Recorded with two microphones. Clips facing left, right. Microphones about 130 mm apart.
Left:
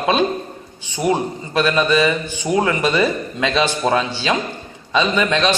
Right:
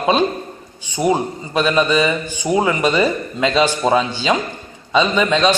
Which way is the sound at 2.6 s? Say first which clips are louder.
Right 1 dB; 15° right (ahead or behind).